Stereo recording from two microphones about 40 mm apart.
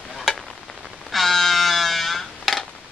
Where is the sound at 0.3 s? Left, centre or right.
Centre.